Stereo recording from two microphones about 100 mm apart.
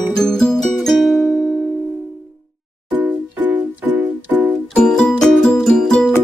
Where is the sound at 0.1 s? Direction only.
5° left (ahead or behind).